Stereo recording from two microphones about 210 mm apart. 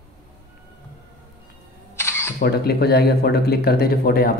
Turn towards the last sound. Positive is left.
turn(degrees=45)  # may be behind; listen again after turning